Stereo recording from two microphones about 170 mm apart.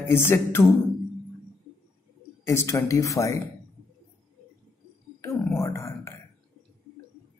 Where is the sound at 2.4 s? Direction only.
15° left (ahead or behind).